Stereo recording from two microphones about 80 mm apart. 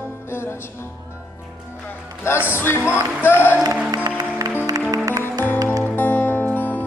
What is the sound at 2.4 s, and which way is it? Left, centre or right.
Music, left.